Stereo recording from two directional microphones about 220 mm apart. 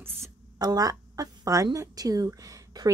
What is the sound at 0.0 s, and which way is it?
Speech, 15° right (ahead or behind).